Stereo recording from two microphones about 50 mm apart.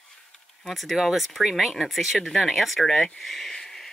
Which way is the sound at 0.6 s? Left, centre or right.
Centre.